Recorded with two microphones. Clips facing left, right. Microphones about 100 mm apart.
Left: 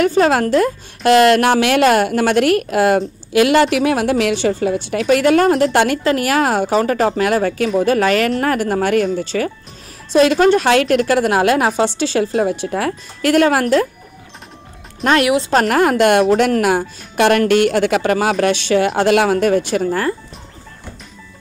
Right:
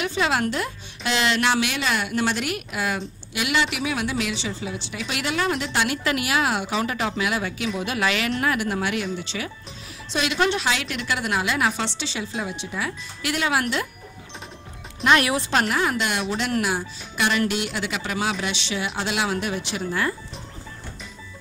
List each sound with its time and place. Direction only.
0.0 s a woman's voice: 45° left (ahead or behind)
15.7 s speech: 55° left (ahead or behind)